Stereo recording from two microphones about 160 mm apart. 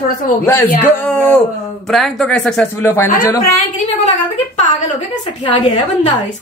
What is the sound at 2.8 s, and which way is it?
Speech, 15° left (ahead or behind).